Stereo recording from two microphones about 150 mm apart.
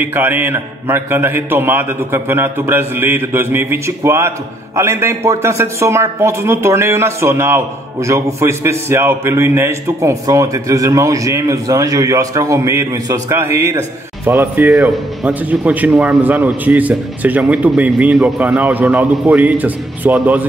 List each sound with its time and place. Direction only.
0.0 s a man's voice: 15° right (ahead or behind)